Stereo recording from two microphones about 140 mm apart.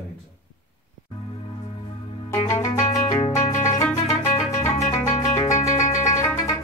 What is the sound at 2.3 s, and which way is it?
Music, 25° left (ahead or behind).